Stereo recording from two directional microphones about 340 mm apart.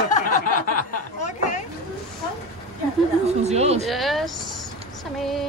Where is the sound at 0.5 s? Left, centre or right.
Left.